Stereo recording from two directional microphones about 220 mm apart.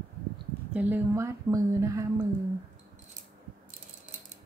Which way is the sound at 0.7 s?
10° right (ahead or behind).